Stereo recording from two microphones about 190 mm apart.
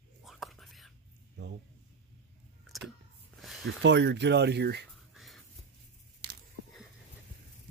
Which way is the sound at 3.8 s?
65° right (ahead or behind).